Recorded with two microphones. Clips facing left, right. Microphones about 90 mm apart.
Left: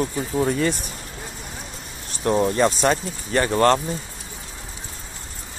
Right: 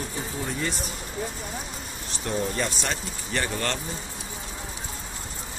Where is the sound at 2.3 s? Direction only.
45° left (ahead or behind).